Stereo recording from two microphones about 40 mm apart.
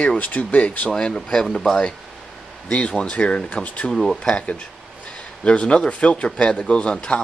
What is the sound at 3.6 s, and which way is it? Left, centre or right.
Speech, left.